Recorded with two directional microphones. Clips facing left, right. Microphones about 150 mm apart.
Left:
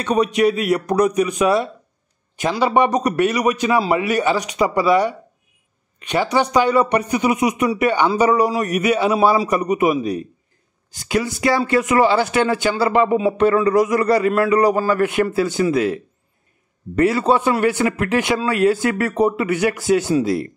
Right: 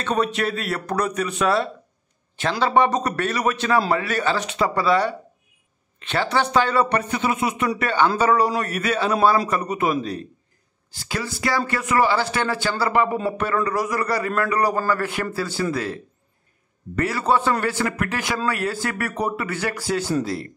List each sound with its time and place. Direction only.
0.0 s a man's voice: 15° left (ahead or behind)